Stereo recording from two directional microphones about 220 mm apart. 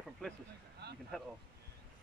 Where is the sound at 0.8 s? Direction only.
50° right (ahead or behind).